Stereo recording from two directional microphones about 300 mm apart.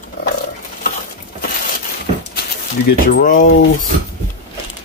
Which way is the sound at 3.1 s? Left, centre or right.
Left.